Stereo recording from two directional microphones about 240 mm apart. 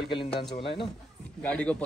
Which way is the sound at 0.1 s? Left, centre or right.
Left.